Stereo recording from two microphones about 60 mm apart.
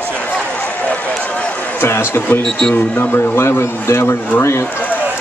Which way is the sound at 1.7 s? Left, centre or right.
Left.